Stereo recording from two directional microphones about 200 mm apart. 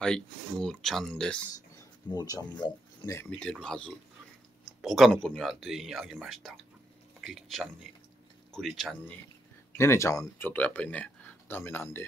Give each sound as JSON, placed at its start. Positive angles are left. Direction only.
{"t": 0.0, "sound": "speech", "side_deg": 5}
{"t": 2.0, "sound": "speech", "side_deg": 20}
{"t": 3.2, "sound": "speech", "side_deg": 5}
{"t": 9.8, "sound": "speech", "side_deg": 15}